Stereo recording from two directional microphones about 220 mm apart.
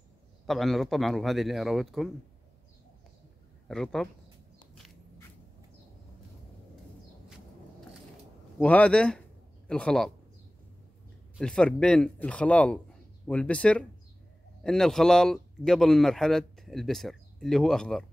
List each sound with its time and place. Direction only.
0.5 s speech: centre (ahead or behind)
3.6 s a man's voice: centre (ahead or behind)
8.5 s speech: 5° left (ahead or behind)
11.3 s speech: 5° left (ahead or behind)